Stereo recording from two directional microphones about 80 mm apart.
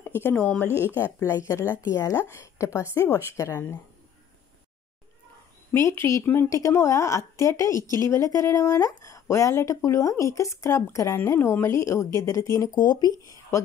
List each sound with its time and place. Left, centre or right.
0.0 s a sound: left
0.4 s a woman's voice: centre
5.7 s a woman's voice: left
12.7 s speech: left